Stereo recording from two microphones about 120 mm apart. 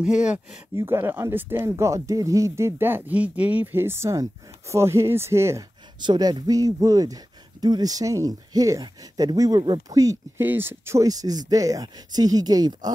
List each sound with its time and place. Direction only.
0.0 s speech: 10° right (ahead or behind)
0.7 s speech: 20° right (ahead or behind)
5.9 s speech: 35° right (ahead or behind)
10.4 s speech: 15° right (ahead or behind); by 12.9 s 35° right (ahead or behind)